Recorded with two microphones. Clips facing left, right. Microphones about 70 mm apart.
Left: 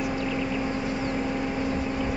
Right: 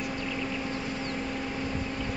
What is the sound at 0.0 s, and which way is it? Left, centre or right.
Vehicle, centre.